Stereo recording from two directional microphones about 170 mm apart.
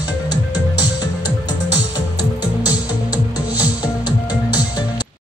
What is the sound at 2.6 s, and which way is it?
Music, 20° left (ahead or behind).